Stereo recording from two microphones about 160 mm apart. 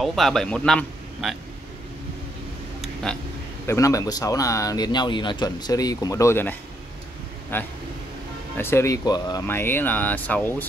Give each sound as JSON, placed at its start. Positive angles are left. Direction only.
{"t": 0.0, "sound": "a man's voice", "side_deg": 0}
{"t": 2.8, "sound": "a sound", "side_deg": 5}
{"t": 3.6, "sound": "speech", "side_deg": 20}
{"t": 7.5, "sound": "speech", "side_deg": 10}